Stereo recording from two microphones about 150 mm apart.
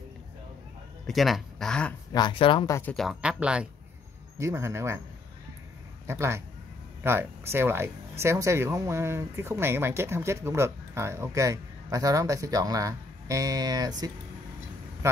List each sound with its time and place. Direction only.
1.0 s speech: centre (ahead or behind)
2.1 s speech: 30° left (ahead or behind)
2.7 s speech: 15° left (ahead or behind)
3.0 s speech: 5° right (ahead or behind)
4.4 s speech: 20° right (ahead or behind)
6.0 s speech: 15° right (ahead or behind)